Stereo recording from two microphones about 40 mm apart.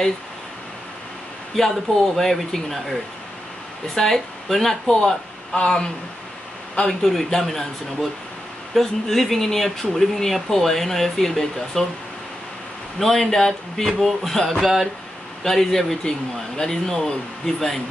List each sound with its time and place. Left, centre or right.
1.5 s speech: centre
5.0 s speech: left
6.9 s speech: centre
13.0 s speech: centre
14.6 s speech: centre
15.4 s speech: centre